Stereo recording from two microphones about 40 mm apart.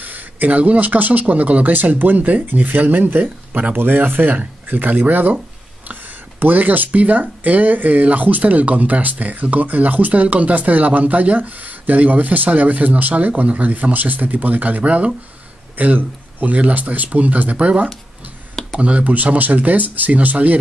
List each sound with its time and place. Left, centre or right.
0.0 s speech: right